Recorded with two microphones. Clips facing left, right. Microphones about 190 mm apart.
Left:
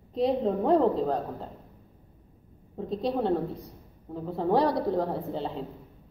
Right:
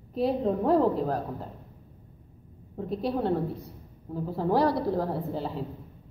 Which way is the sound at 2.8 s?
25° left (ahead or behind).